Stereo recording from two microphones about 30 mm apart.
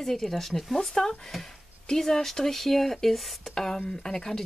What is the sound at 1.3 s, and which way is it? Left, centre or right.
Speech, centre.